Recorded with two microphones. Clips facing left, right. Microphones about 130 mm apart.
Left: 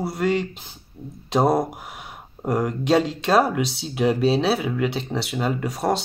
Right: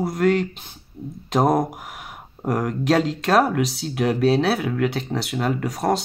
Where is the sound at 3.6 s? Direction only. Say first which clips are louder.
Right 2 dB; 30° left (ahead or behind).